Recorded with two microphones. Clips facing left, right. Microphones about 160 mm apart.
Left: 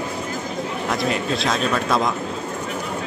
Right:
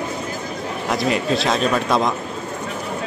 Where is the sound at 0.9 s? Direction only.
Centre (ahead or behind).